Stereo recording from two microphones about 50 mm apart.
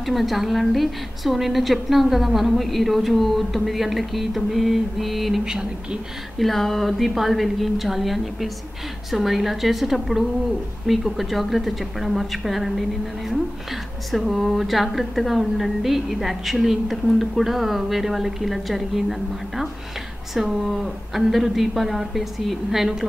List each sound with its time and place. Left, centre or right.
0.0 s a woman's voice: centre
5.4 s speech: centre
6.3 s a woman's voice: centre
14.1 s a woman's voice: centre